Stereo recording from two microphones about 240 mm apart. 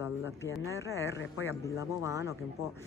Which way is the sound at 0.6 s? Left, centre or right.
Centre.